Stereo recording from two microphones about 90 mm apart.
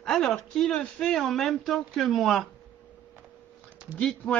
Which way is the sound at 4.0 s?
5° left (ahead or behind).